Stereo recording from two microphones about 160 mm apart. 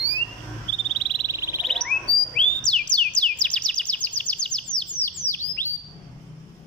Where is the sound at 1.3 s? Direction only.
20° right (ahead or behind).